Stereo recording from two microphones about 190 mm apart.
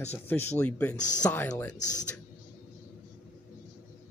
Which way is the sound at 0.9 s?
40° left (ahead or behind).